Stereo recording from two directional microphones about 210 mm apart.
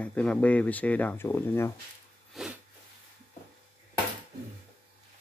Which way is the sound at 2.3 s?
Centre (ahead or behind).